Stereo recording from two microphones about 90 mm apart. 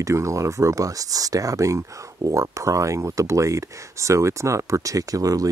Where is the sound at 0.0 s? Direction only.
35° right (ahead or behind).